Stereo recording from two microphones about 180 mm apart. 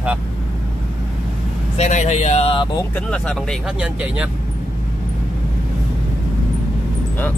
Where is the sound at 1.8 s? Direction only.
40° left (ahead or behind).